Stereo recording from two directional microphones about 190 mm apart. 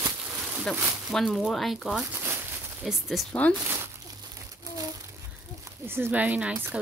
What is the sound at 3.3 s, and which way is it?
Speech, 10° left (ahead or behind).